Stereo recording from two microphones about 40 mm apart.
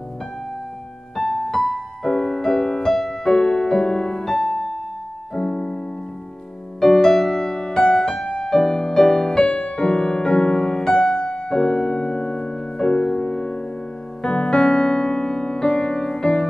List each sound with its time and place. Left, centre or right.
1.1 s music: centre
4.3 s music: centre
5.3 s music: centre
6.8 s music: centre